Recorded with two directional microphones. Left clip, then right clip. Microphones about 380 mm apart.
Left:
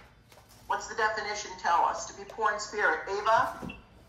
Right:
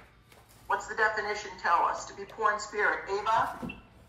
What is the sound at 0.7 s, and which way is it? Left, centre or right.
A woman's voice, centre.